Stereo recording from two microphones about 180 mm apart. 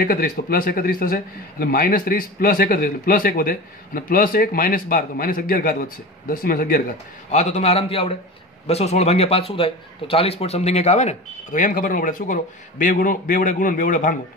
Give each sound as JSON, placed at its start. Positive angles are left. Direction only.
{"t": 0.0, "sound": "a man's voice", "side_deg": 55}
{"t": 7.2, "sound": "a man's voice", "side_deg": 40}